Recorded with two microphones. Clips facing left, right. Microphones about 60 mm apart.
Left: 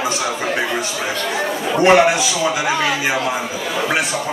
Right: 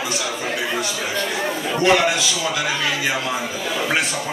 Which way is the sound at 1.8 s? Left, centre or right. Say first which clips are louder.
Left 5 dB; left.